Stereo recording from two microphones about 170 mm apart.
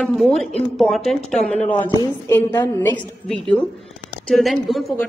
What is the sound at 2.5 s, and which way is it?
Speech, 20° left (ahead or behind).